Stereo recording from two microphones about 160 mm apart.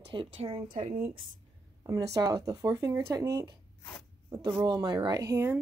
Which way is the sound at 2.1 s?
25° right (ahead or behind).